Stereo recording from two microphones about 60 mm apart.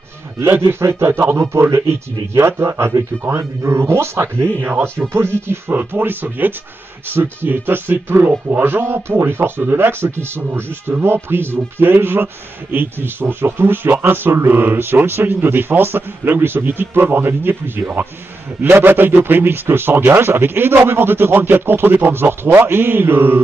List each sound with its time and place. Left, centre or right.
0.4 s a man's voice: right